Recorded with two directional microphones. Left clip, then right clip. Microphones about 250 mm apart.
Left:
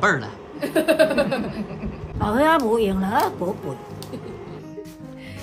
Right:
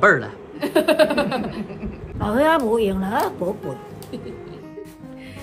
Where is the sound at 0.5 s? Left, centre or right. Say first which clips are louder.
Right 1 dB; centre.